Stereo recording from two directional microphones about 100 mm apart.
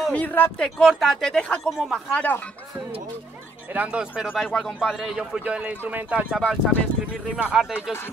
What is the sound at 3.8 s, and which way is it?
Speech, 10° right (ahead or behind).